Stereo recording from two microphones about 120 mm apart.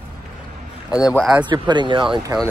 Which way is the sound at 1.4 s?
40° right (ahead or behind).